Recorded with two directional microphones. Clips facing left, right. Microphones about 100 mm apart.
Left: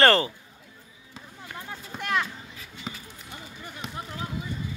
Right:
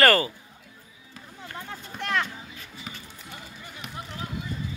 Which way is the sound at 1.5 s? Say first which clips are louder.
Even; 5° left (ahead or behind).